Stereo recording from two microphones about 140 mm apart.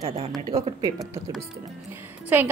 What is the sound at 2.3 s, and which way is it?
Speech, 15° right (ahead or behind).